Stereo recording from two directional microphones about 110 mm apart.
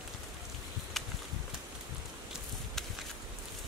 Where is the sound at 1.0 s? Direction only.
Centre (ahead or behind).